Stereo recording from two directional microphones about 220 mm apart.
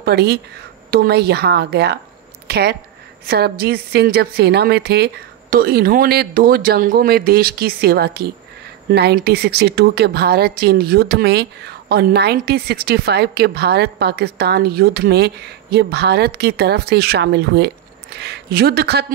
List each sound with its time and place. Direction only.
0.0 s a woman's voice: 45° right (ahead or behind)